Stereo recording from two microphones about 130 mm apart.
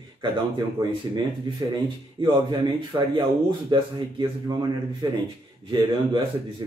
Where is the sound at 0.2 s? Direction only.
35° right (ahead or behind).